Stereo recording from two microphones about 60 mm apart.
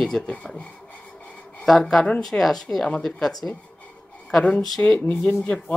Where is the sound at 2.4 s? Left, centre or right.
Centre.